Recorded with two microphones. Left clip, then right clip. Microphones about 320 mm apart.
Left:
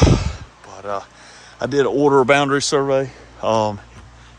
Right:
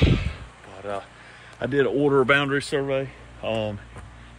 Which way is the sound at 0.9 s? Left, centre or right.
Centre.